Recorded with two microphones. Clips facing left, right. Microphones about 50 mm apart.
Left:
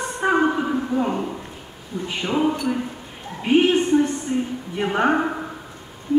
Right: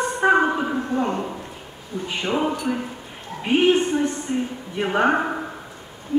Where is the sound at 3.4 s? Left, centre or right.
Centre.